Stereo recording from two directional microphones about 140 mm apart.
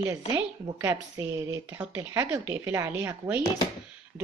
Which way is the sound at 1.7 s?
10° right (ahead or behind).